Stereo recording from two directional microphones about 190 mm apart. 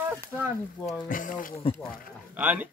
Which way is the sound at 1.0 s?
45° left (ahead or behind).